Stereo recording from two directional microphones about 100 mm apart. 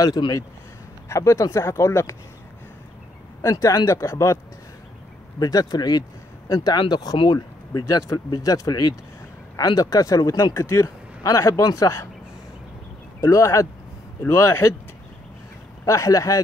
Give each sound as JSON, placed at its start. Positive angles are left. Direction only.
{"t": 0.0, "sound": "speech", "side_deg": 40}
{"t": 3.4, "sound": "speech", "side_deg": 30}
{"t": 5.4, "sound": "speech", "side_deg": 40}
{"t": 13.2, "sound": "speech", "side_deg": 30}
{"t": 15.8, "sound": "speech", "side_deg": 35}